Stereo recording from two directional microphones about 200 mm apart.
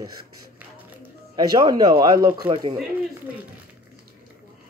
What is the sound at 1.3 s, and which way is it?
A man's voice, 20° right (ahead or behind).